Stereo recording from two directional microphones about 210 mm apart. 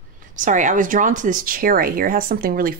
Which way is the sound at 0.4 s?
35° right (ahead or behind).